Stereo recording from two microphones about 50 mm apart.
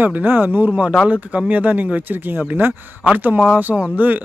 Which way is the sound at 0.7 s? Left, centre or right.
Right.